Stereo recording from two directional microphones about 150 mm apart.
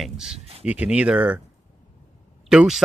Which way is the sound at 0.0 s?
5° right (ahead or behind).